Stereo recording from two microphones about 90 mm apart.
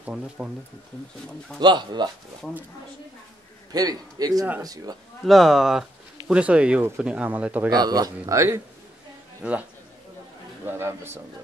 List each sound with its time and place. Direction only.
0.0 s speech: 10° right (ahead or behind)
1.6 s speech: 55° right (ahead or behind)
3.7 s a man's voice: 45° right (ahead or behind)
5.2 s speech: centre (ahead or behind); by 7.7 s 15° right (ahead or behind)
7.7 s a man's voice: 45° right (ahead or behind)
9.4 s speech: 15° right (ahead or behind)
10.6 s a man's voice: 25° right (ahead or behind)